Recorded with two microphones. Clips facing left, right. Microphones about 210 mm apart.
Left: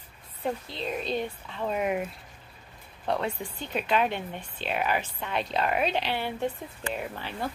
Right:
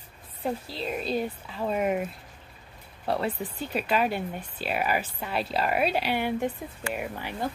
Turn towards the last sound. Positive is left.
turn(degrees=-15)  # may be behind; listen again after turning